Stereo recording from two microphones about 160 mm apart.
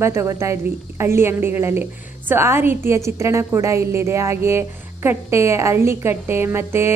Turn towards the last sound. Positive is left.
turn(degrees=-15)  # may be behind; listen again after turning